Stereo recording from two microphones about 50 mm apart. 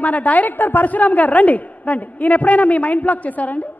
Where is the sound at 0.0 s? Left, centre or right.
Left.